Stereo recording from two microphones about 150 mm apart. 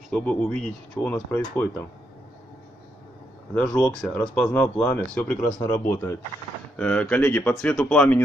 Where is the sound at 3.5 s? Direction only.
5° left (ahead or behind).